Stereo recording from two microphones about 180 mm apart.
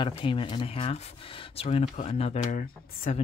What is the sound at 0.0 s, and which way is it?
Speech, 30° left (ahead or behind).